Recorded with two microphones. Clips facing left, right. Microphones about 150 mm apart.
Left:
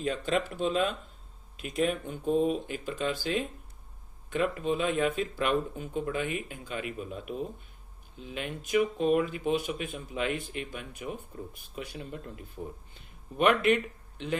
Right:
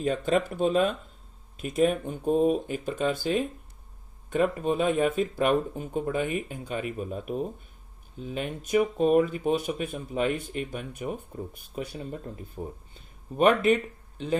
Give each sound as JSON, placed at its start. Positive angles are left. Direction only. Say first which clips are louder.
{"t": 0.1, "sound": "speech", "louder": "right 4 dB", "side_deg": -50}